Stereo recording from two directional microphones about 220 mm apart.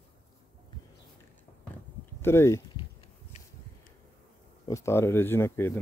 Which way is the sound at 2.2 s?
10° left (ahead or behind).